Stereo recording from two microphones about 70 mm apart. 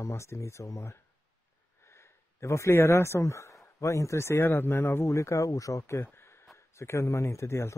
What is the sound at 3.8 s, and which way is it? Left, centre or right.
Speech, left.